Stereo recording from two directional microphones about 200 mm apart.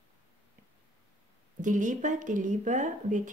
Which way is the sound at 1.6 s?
40° right (ahead or behind).